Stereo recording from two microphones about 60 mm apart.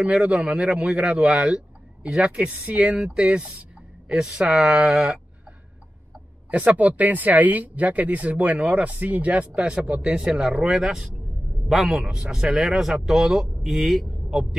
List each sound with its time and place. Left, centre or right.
0.0 s speech: centre
4.1 s speech: centre
6.5 s speech: right; by 14.5 s centre